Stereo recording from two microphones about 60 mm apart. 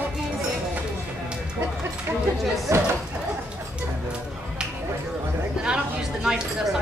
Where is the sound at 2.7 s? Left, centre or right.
Right.